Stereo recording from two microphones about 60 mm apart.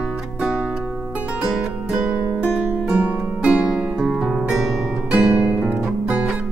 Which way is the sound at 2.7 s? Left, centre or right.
Right.